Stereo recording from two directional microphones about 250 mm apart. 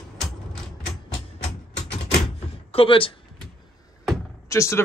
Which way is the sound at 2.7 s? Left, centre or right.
Left.